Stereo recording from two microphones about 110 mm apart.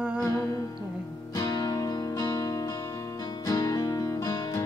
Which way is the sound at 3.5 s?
35° left (ahead or behind).